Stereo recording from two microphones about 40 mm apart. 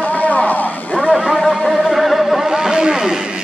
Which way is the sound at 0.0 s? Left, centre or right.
Left.